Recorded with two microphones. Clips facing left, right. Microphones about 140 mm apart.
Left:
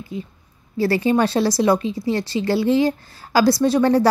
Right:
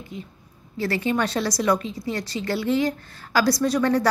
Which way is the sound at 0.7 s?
35° left (ahead or behind).